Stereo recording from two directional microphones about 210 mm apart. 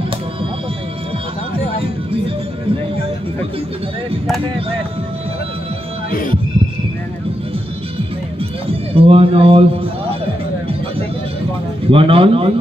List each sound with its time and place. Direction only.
8.9 s speech: 25° right (ahead or behind)
11.9 s speech: 25° right (ahead or behind)